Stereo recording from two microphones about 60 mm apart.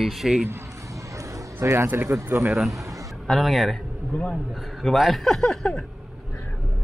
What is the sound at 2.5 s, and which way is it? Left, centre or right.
Speech, centre.